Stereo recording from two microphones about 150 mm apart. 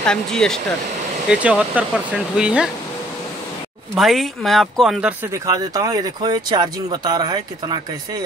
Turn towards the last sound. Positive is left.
turn(degrees=-30)  # may be behind; listen again after turning